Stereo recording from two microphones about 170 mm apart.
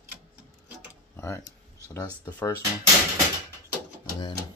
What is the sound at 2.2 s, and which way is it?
Speech, 10° left (ahead or behind).